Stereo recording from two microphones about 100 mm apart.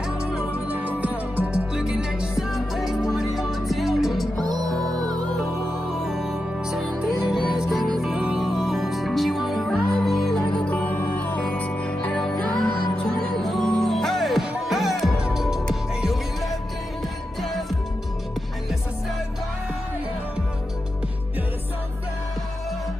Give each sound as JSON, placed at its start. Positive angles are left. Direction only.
{"t": 0.0, "sound": "music", "side_deg": -5}
{"t": 4.4, "sound": "music", "side_deg": -40}
{"t": 6.0, "sound": "music", "side_deg": -5}
{"t": 10.6, "sound": "music", "side_deg": 15}